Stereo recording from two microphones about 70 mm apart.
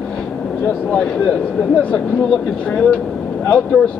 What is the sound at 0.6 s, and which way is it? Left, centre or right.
Speech, left.